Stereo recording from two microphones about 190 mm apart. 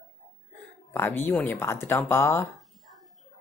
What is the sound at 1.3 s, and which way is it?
Speech, 10° left (ahead or behind).